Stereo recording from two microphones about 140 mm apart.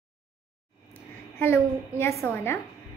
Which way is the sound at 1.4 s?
15° left (ahead or behind).